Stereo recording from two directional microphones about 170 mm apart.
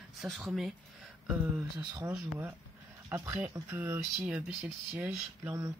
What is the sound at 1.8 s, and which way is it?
Speech, 20° right (ahead or behind).